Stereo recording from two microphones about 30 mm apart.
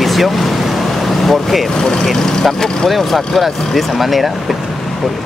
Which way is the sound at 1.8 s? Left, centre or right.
Left.